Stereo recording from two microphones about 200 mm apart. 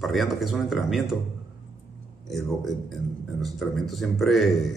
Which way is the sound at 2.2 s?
Centre (ahead or behind).